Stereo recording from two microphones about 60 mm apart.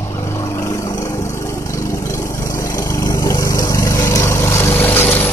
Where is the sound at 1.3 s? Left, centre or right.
Left.